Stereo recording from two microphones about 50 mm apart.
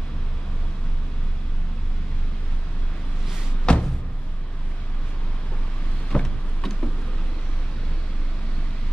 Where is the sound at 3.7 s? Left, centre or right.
Centre.